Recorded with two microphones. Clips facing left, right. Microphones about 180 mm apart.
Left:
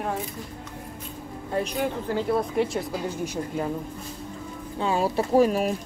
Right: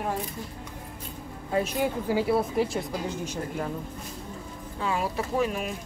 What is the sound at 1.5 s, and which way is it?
Speech, 5° right (ahead or behind).